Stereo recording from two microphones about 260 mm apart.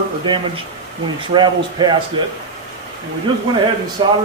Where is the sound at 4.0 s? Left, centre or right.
Centre.